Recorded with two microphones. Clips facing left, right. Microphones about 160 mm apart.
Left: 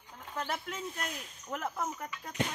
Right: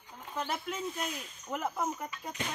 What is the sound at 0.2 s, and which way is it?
Speech, 10° right (ahead or behind).